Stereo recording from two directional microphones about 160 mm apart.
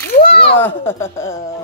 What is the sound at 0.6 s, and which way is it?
Speech, 15° left (ahead or behind).